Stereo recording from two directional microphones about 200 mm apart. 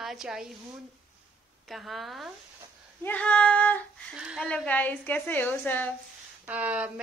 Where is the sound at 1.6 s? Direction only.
Centre (ahead or behind).